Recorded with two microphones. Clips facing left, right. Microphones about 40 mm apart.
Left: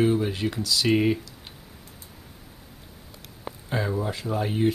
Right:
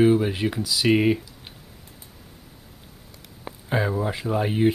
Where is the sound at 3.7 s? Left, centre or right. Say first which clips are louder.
Right 3 dB; centre.